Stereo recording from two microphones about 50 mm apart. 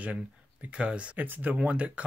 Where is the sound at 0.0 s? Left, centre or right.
Right.